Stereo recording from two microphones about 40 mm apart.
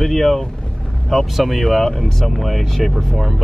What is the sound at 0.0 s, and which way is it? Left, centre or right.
Speech, centre.